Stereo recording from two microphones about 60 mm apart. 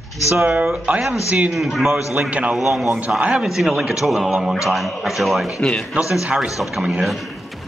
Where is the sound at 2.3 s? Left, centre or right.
Right.